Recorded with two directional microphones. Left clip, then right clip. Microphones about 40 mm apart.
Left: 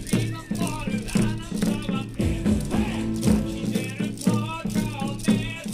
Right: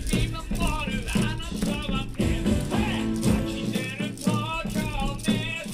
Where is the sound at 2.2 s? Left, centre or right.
Right.